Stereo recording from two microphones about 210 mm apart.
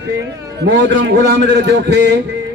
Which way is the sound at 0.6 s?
55° right (ahead or behind).